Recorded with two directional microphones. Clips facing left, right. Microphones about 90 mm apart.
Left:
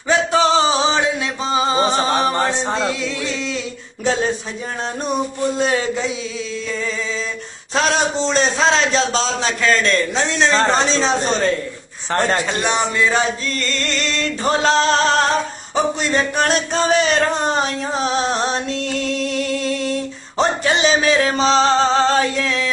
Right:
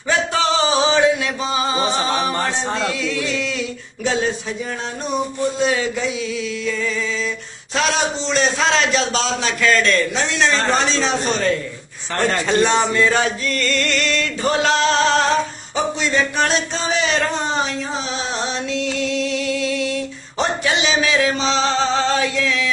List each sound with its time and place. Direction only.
0.1 s music: 25° left (ahead or behind)
5.6 s a man's voice: 40° left (ahead or behind)
7.7 s a man's voice: 40° left (ahead or behind)
12.5 s a sound: 20° left (ahead or behind); by 17.6 s 50° left (ahead or behind)
18.0 s music: 50° left (ahead or behind)